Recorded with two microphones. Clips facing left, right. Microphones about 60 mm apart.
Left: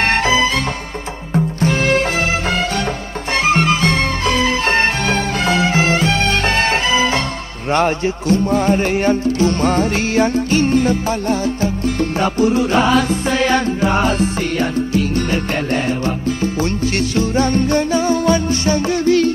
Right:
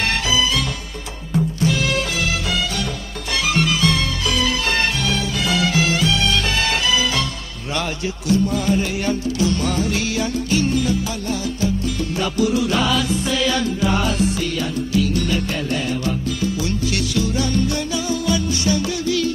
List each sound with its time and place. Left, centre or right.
0.0 s music: left
3.4 s music: left